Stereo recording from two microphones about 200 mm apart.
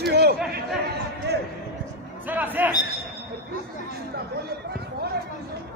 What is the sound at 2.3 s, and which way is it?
Speech, 10° right (ahead or behind).